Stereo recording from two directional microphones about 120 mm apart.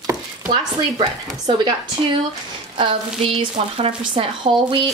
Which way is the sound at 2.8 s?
50° right (ahead or behind).